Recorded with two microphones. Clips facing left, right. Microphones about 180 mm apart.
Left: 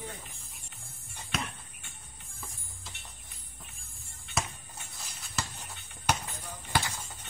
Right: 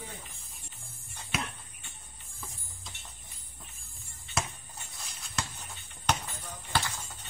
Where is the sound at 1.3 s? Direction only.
5° right (ahead or behind).